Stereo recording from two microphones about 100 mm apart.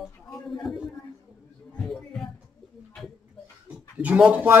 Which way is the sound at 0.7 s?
Centre (ahead or behind).